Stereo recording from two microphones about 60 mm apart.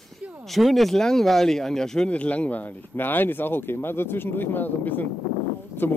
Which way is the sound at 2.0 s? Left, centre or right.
Left.